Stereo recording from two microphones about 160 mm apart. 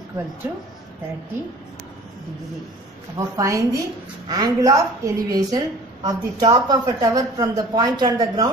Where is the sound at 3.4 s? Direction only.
20° right (ahead or behind).